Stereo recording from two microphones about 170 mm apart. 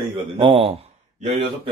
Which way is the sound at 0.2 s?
35° right (ahead or behind).